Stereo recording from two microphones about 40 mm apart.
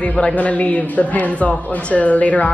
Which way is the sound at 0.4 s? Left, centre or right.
Left.